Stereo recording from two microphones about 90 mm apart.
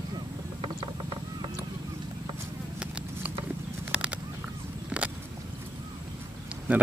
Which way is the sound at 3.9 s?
15° right (ahead or behind).